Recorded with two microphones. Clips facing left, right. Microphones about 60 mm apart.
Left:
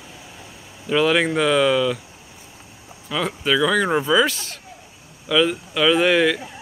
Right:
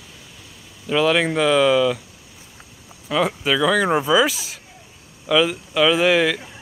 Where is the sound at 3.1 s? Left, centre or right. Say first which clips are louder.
Right 2 dB; centre.